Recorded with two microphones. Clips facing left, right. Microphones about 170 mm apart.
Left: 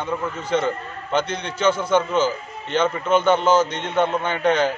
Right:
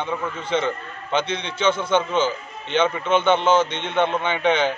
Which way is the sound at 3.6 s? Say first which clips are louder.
Left 1 dB; 25° right (ahead or behind).